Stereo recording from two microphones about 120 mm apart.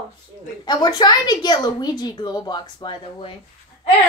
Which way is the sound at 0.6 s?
35° left (ahead or behind).